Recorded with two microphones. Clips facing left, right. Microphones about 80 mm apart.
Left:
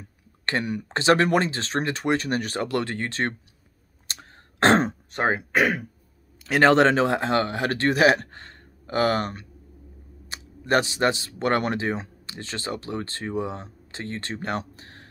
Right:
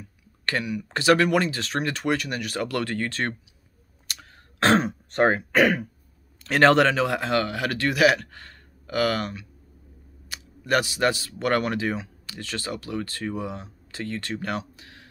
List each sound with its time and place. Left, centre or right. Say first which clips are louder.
0.8 s speech: even; left
4.1 s throat clearing: even; left
5.1 s speech: right 4 dB; centre; by 15.0 s left